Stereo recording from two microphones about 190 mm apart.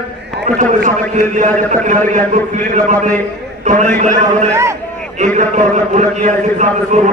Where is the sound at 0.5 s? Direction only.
35° right (ahead or behind).